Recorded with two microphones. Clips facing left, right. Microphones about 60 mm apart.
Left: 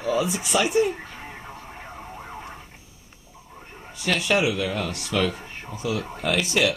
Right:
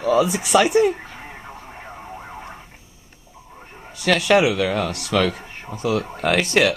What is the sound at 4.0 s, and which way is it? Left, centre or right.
Speech, right.